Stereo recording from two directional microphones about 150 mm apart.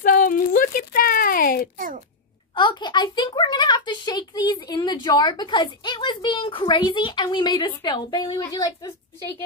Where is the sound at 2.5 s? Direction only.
30° left (ahead or behind).